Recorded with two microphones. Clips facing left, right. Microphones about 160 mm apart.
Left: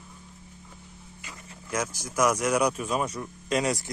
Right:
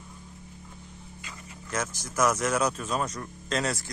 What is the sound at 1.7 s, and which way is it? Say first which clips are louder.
Speech: left 2 dB; 10° left (ahead or behind).